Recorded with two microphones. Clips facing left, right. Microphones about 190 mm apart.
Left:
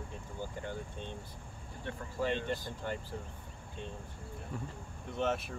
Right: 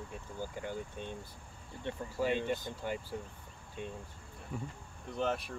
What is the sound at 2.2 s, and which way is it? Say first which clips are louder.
Speech: right 1 dB; 10° right (ahead or behind).